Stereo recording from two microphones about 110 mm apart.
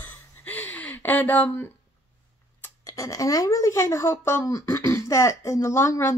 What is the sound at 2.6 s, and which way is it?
Speech, 30° left (ahead or behind).